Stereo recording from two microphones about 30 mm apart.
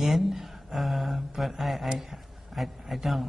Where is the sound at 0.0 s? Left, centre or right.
Centre.